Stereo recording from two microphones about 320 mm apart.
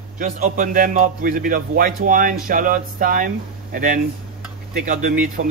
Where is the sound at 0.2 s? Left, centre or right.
Right.